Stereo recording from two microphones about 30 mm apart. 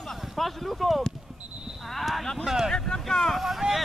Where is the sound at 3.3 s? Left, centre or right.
Centre.